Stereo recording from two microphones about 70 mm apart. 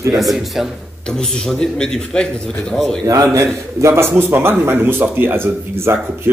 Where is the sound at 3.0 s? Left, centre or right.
Right.